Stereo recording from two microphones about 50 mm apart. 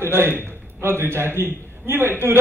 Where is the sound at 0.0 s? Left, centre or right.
Right.